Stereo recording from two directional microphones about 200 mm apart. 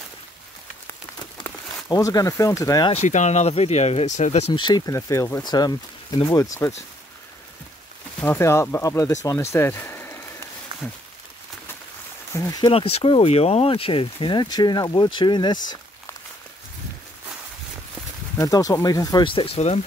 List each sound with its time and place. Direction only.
1.4 s a sound: 20° left (ahead or behind)
1.9 s speech: 15° left (ahead or behind)
2.9 s speech: 35° left (ahead or behind); by 6.7 s 15° left (ahead or behind)
8.2 s speech: 10° left (ahead or behind)
12.4 s speech: 20° left (ahead or behind)
18.4 s speech: 15° left (ahead or behind)